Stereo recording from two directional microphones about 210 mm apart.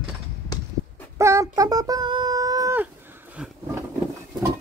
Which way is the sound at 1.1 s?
15° right (ahead or behind).